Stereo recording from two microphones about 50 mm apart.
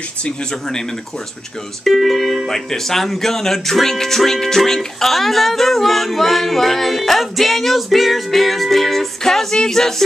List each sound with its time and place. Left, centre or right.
0.2 s speech: centre
1.9 s speech: centre